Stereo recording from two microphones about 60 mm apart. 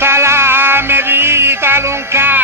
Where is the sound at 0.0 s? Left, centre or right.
Right.